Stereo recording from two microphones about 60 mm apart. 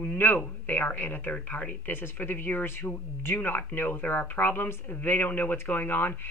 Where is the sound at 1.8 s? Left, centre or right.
Left.